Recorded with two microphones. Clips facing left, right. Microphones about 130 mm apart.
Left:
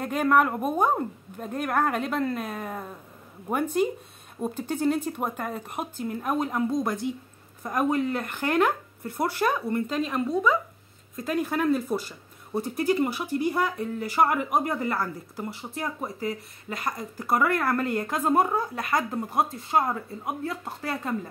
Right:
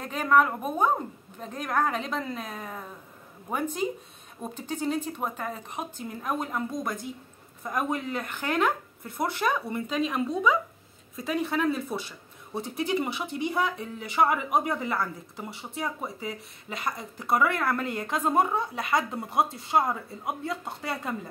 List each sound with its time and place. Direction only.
0.0 s a woman's voice: 10° left (ahead or behind)
4.8 s a woman's voice: 10° left (ahead or behind)
7.6 s speech: centre (ahead or behind)
8.3 s speech: 10° left (ahead or behind)